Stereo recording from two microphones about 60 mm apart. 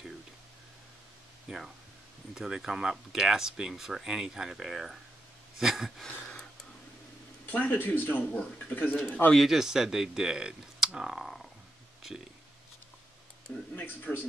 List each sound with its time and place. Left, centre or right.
1.5 s a sound: centre
2.3 s speech: centre
5.6 s a sound: centre
7.4 s speech: left
8.2 s speech: centre
8.6 s speech: left
8.9 s speech: centre
9.3 s speech: centre
13.7 s speech: left